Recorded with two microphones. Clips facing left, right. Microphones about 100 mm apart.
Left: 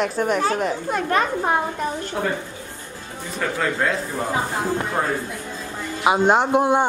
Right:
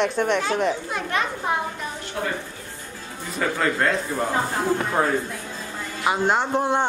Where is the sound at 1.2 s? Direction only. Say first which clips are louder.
Left 3 dB; 40° left (ahead or behind).